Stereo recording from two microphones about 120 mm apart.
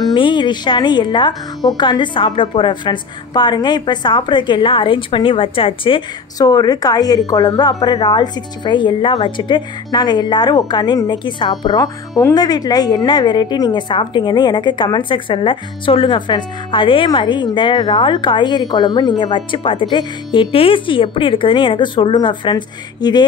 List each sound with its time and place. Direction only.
0.1 s a woman's voice: 40° left (ahead or behind)
6.3 s a woman's voice: 35° left (ahead or behind)